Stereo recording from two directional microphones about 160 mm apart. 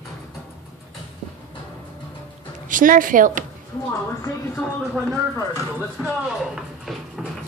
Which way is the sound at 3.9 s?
20° left (ahead or behind).